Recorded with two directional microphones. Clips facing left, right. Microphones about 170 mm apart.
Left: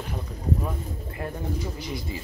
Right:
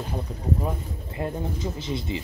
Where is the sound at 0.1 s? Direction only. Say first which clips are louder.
Even; 20° right (ahead or behind).